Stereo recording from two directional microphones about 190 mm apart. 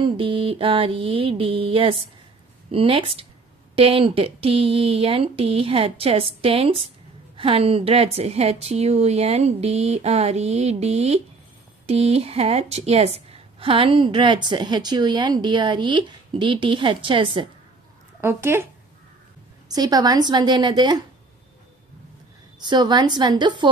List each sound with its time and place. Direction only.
0.0 s a woman's voice: 25° right (ahead or behind)
18.2 s speech: 10° right (ahead or behind)
19.7 s a woman's voice: 20° right (ahead or behind)
22.6 s a woman's voice: 25° right (ahead or behind)